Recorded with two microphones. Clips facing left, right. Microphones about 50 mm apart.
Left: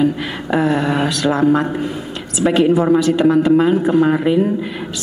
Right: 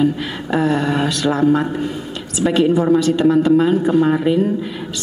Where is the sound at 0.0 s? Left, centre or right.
Centre.